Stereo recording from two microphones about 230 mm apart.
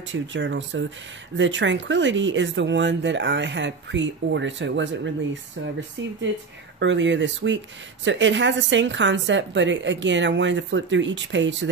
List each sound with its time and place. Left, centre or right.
0.1 s speech: right
6.8 s speech: right